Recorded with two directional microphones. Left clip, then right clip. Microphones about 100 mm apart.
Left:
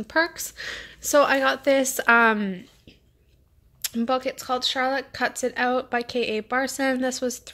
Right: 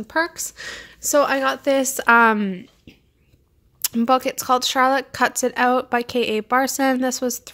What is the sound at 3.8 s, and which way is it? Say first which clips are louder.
Speech: right 6 dB; 55° right (ahead or behind).